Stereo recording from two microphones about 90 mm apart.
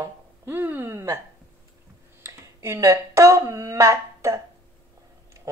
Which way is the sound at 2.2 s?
30° right (ahead or behind).